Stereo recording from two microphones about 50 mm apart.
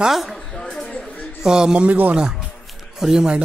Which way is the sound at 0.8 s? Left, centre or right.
Left.